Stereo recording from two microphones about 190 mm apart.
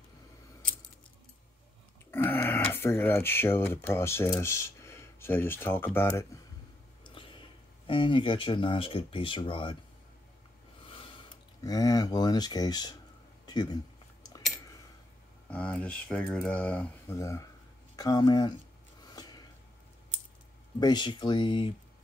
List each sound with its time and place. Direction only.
2.0 s speech: 10° left (ahead or behind)
7.2 s speech: 25° left (ahead or behind)
10.9 s speech: 25° left (ahead or behind)
15.5 s speech: 5° left (ahead or behind)
19.0 s a sound: 20° left (ahead or behind)
20.8 s speech: 25° left (ahead or behind)